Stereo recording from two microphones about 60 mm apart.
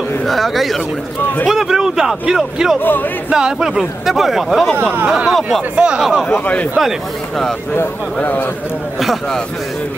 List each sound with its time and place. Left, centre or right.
0.3 s a man's voice: centre
2.8 s speech: left
3.3 s a man's voice: centre
5.0 s a man's voice: centre
6.4 s a man's voice: left
8.2 s a man's voice: left